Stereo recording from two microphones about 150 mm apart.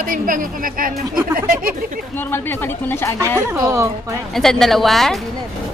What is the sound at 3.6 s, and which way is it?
Speech, 20° right (ahead or behind).